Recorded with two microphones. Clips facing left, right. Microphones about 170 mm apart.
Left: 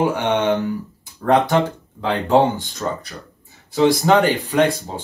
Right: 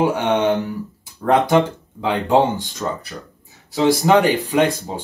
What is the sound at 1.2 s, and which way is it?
Speech, 10° right (ahead or behind).